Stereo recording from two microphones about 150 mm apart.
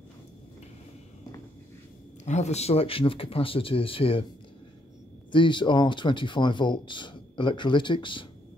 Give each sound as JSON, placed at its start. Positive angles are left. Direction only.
{"t": 2.2, "sound": "speech", "side_deg": 50}
{"t": 5.3, "sound": "speech", "side_deg": 30}